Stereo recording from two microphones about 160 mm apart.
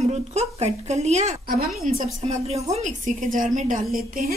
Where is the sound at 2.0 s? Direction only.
50° right (ahead or behind).